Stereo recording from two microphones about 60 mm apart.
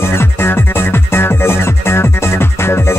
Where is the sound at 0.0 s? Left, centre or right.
Left.